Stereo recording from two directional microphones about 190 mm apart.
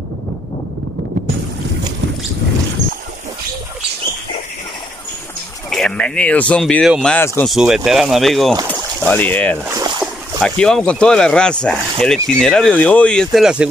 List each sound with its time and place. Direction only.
5.7 s speech: 5° left (ahead or behind)
9.7 s boat: 15° right (ahead or behind)
10.4 s speech: 5° left (ahead or behind)